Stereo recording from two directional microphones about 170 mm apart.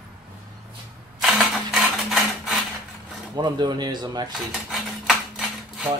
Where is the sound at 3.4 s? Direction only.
25° right (ahead or behind).